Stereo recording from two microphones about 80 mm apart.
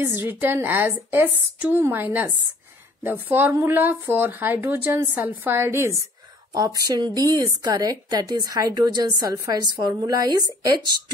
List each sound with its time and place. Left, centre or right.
0.2 s a woman's voice: right
6.5 s a woman's voice: right